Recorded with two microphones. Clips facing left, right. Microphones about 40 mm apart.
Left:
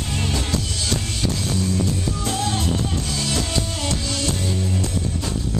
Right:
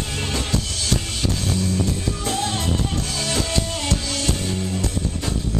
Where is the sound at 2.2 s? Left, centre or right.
Centre.